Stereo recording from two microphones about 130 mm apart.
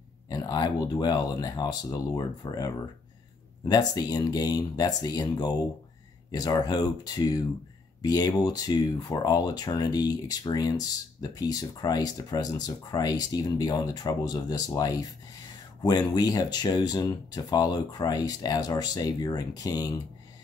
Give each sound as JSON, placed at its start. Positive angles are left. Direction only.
{"t": 0.3, "sound": "speech", "side_deg": 30}